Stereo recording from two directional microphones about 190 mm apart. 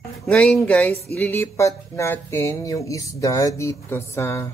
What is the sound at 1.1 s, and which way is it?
Speech, 10° left (ahead or behind).